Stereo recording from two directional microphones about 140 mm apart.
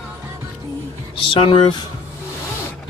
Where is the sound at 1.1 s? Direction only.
40° left (ahead or behind).